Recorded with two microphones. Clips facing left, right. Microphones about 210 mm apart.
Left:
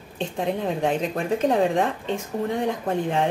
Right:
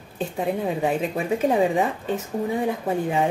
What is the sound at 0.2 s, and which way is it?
Speech, 5° right (ahead or behind).